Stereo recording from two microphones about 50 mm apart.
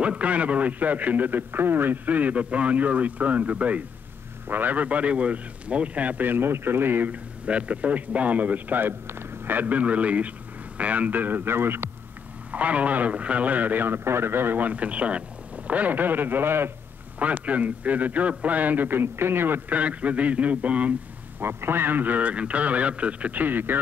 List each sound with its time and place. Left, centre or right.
0.0 s a man's voice: right
2.0 s a man's voice: right
7.1 s a man's voice: right
11.4 s a man's voice: right
12.4 s a man's voice: right
17.2 s a man's voice: right
19.7 s a man's voice: right
21.4 s a man's voice: right